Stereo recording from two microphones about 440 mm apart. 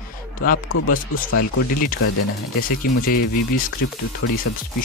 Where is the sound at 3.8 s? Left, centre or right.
Centre.